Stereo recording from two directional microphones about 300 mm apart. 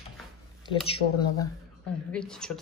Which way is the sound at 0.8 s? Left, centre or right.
Centre.